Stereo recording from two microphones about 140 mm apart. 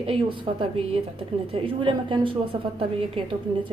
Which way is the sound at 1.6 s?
35° right (ahead or behind).